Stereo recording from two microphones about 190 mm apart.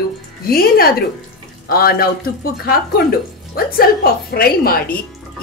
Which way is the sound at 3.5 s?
50° left (ahead or behind).